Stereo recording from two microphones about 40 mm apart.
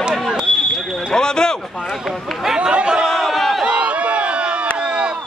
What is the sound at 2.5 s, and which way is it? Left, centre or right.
Chatter, right.